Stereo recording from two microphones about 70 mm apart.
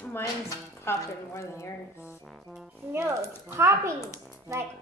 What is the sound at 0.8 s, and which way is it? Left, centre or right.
A woman's voice, left.